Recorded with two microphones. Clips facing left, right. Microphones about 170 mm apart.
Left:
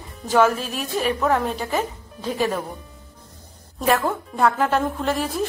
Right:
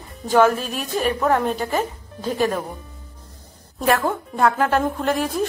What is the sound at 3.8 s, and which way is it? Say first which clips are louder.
A woman's voice: right 1 dB; centre (ahead or behind).